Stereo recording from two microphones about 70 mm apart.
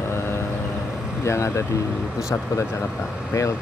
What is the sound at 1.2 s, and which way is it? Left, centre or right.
Speech, left.